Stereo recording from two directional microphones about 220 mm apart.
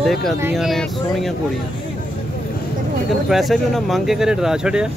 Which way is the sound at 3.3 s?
Centre (ahead or behind).